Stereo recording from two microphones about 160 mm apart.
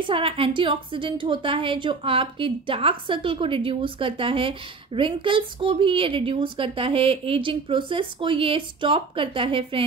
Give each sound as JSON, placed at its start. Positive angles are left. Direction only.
{"t": 0.0, "sound": "a woman's voice", "side_deg": -35}